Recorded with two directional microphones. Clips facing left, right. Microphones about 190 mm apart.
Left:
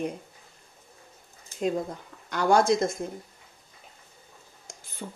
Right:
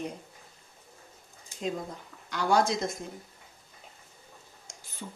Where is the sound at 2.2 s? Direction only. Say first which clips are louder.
Left 4 dB; 50° left (ahead or behind).